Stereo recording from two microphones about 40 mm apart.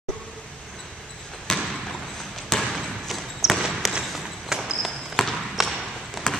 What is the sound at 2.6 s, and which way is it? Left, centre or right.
Basketball bounce, centre.